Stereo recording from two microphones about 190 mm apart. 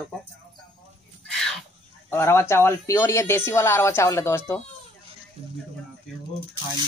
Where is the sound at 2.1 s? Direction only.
10° left (ahead or behind).